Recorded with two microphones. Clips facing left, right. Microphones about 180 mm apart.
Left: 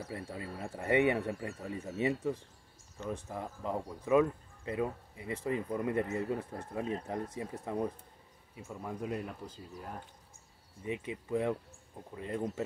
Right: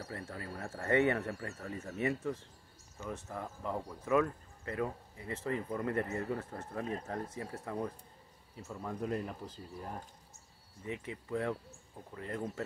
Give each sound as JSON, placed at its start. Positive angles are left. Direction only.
{"t": 0.1, "sound": "speech", "side_deg": 15}
{"t": 10.8, "sound": "speech", "side_deg": 20}